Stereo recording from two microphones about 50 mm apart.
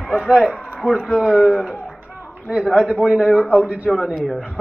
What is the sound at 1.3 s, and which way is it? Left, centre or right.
Speech, centre.